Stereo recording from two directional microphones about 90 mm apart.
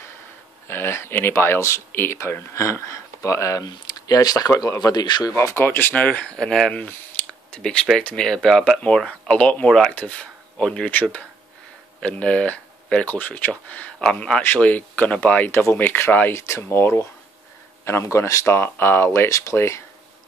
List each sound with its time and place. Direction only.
0.7 s speech: 25° left (ahead or behind)
3.6 s speech: 45° left (ahead or behind)
5.3 s speech: 30° left (ahead or behind)